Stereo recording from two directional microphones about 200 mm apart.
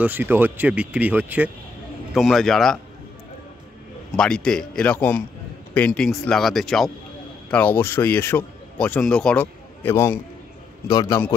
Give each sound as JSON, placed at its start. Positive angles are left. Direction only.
{"t": 0.0, "sound": "speech", "side_deg": -10}
{"t": 4.2, "sound": "a man's voice", "side_deg": 5}